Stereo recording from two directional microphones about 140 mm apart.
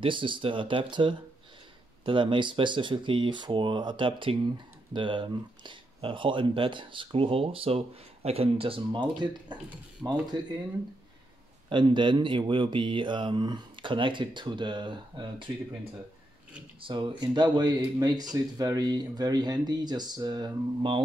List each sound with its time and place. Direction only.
0.0 s speech: 35° right (ahead or behind)
11.7 s speech: 35° right (ahead or behind)